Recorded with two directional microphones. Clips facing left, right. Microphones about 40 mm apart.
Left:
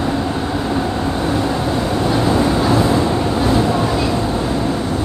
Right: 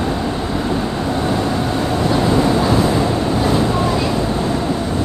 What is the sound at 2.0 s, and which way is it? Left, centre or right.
Vehicle, centre.